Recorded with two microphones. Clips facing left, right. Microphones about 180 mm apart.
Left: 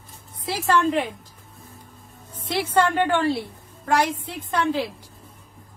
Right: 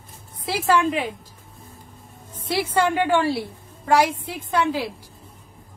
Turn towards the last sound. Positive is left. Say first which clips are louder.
# right 1 dB
turn(degrees=-10)  # may be behind; listen again after turning